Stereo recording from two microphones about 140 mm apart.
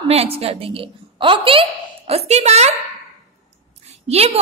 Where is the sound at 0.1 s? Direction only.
45° right (ahead or behind).